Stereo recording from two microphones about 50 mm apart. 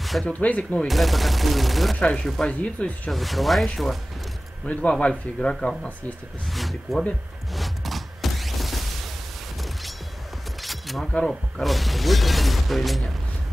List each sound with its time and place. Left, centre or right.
0.0 s gunshot: centre
0.3 s speech: left
0.8 s speech: centre
2.0 s chopping: centre
2.4 s speech: left
3.1 s speech: centre
4.7 s speech: left
5.4 s chopping: centre
6.5 s speech: centre
7.5 s a sound: centre
10.6 s single-lens reflex camera: centre
11.2 s speech: centre